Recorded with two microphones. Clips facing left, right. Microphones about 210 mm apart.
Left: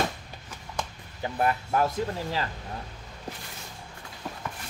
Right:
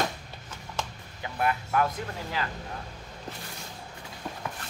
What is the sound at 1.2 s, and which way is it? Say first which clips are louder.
Speech: left 2 dB; 35° left (ahead or behind).